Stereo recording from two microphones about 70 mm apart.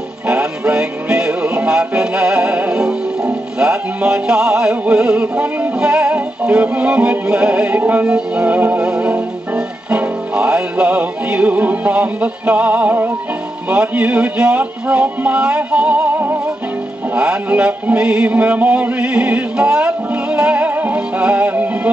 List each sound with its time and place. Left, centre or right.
0.3 s music: centre